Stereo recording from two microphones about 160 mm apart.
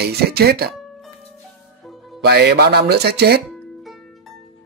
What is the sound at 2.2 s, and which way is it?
Speech, 85° right.